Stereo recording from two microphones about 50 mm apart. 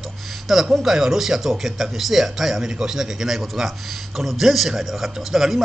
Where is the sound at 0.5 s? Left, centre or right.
Centre.